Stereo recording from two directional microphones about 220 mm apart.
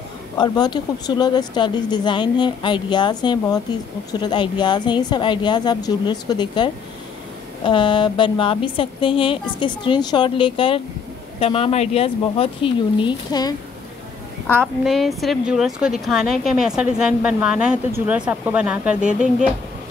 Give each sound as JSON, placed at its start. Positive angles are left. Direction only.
{"t": 0.4, "sound": "speech", "side_deg": 20}
{"t": 14.5, "sound": "a woman's voice", "side_deg": 0}